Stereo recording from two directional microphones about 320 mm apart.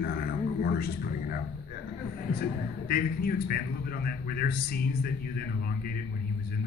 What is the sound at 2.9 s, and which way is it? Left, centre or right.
A man's voice, left.